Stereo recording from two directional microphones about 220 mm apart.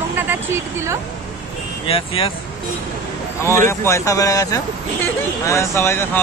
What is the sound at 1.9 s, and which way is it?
Speech, 25° left (ahead or behind).